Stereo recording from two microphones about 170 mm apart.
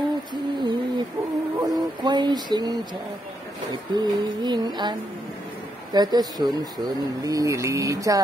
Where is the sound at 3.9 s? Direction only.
25° right (ahead or behind).